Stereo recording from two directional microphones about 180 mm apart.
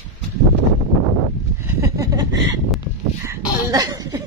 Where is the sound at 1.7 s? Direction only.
15° right (ahead or behind).